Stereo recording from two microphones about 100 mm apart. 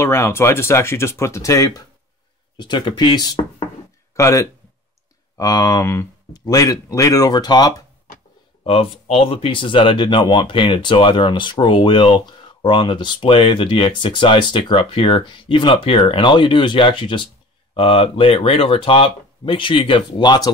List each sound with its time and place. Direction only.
0.0 s speech: 25° left (ahead or behind)
2.5 s speech: 50° left (ahead or behind)
4.1 s speech: 30° left (ahead or behind)
8.6 s speech: 75° left (ahead or behind); by 17.3 s 55° left (ahead or behind)
17.7 s speech: 70° left (ahead or behind); by 20.5 s 45° left (ahead or behind)